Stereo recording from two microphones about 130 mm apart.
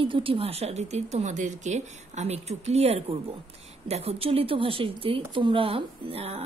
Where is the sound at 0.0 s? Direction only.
45° right (ahead or behind).